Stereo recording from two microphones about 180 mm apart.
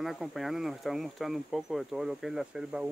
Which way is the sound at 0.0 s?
Centre (ahead or behind).